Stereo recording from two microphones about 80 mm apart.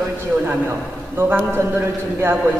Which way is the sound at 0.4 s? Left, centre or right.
Right.